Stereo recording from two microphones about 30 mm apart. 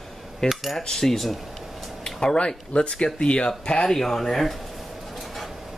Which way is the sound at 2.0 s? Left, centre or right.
Left.